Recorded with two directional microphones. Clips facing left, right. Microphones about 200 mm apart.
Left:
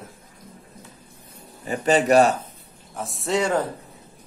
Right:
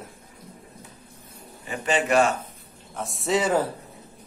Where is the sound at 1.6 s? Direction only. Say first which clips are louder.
Left 5 dB; 40° left (ahead or behind).